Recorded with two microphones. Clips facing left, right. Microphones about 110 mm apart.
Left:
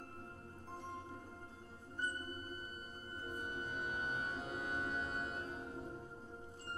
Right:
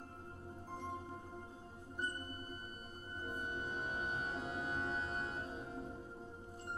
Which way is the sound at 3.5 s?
30° right (ahead or behind).